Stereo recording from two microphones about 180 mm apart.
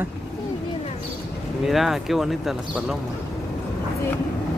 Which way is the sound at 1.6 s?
Centre (ahead or behind).